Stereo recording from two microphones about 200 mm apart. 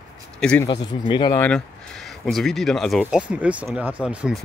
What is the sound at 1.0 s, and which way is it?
Speech, 25° left (ahead or behind).